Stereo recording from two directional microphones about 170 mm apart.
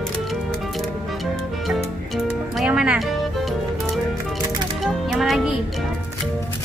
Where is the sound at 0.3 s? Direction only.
Centre (ahead or behind).